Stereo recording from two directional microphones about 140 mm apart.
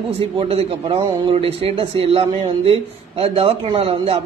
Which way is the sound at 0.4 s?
40° right (ahead or behind).